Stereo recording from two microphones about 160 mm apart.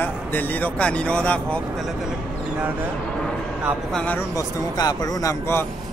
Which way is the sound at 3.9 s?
10° left (ahead or behind).